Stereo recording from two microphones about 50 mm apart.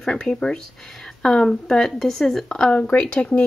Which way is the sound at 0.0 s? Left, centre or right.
Centre.